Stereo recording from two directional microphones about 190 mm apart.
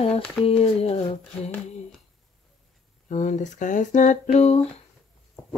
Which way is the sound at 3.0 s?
40° left (ahead or behind).